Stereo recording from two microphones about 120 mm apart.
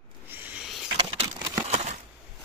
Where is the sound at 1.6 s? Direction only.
65° right (ahead or behind).